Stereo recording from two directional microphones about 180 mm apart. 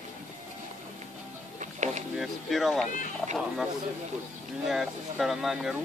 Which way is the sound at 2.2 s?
Centre (ahead or behind).